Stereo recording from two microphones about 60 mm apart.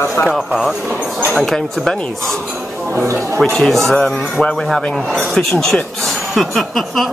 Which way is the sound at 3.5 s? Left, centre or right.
Centre.